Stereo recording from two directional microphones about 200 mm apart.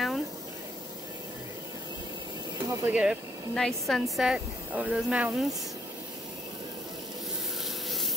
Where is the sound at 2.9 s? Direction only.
5° right (ahead or behind).